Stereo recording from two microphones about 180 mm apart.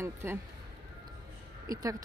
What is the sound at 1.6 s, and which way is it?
Speech, 20° right (ahead or behind).